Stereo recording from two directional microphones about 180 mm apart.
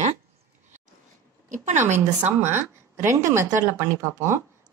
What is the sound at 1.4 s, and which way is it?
Speech, 40° right (ahead or behind).